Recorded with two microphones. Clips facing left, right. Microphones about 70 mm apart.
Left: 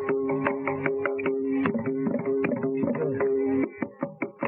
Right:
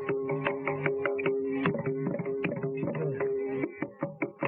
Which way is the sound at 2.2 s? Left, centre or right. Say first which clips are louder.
Left 6 dB; left.